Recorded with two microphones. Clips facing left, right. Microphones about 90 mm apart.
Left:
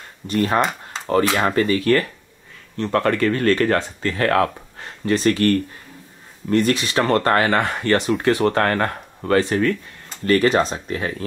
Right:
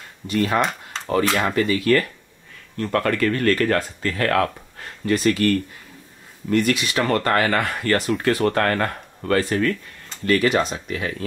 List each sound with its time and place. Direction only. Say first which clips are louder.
0.3 s speech: left 1 dB; 35° left (ahead or behind)
0.6 s a sound: left 2 dB; 5° left (ahead or behind)
1.4 s speech: left 2 dB; 35° left (ahead or behind)